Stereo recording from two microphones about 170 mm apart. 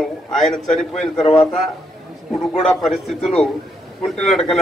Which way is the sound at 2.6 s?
Centre (ahead or behind).